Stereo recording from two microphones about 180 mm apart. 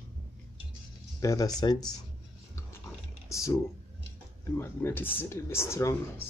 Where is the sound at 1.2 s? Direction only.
20° left (ahead or behind).